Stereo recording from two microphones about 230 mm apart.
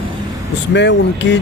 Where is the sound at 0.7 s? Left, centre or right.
Left.